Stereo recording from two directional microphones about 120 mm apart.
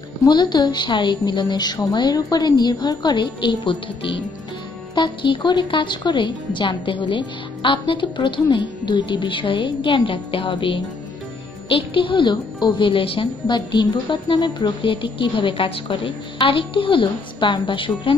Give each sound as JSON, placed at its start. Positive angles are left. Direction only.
{"t": 0.2, "sound": "a woman's voice", "side_deg": 35}
{"t": 11.9, "sound": "a woman's voice", "side_deg": 45}